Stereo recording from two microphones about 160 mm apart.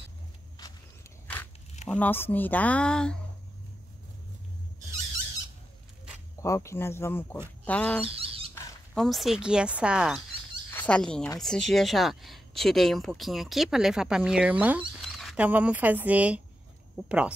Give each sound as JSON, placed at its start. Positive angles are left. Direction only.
{"t": 1.2, "sound": "a sound", "side_deg": 10}
{"t": 1.9, "sound": "speech", "side_deg": 10}
{"t": 6.4, "sound": "speech", "side_deg": 20}
{"t": 8.0, "sound": "squeak", "side_deg": -35}
{"t": 8.9, "sound": "speech", "side_deg": 0}
{"t": 10.7, "sound": "speech", "side_deg": 10}
{"t": 15.0, "sound": "a sound", "side_deg": 0}
{"t": 15.4, "sound": "speech", "side_deg": -10}